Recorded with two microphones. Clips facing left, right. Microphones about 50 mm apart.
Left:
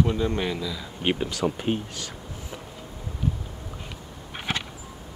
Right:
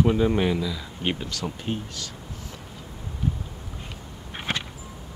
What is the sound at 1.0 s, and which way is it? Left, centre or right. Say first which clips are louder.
Speech: left 5 dB; centre.